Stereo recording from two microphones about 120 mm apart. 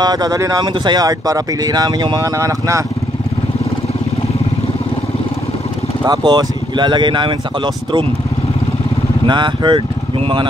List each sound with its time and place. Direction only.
0.0 s speech: 35° right (ahead or behind)
6.0 s speech: 35° right (ahead or behind)
9.2 s speech: 40° right (ahead or behind)